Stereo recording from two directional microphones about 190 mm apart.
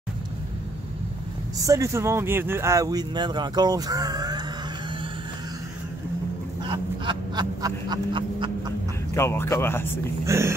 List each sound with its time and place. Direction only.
1.7 s speech: 15° right (ahead or behind)
6.6 s a sound: 25° right (ahead or behind)
9.1 s speech: 15° left (ahead or behind)
10.2 s speech: 15° right (ahead or behind)